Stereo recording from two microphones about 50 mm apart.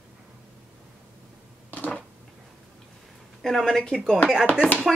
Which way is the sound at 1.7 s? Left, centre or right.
Left.